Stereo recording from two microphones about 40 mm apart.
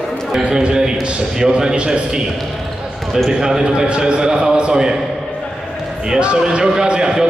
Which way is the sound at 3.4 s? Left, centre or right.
Centre.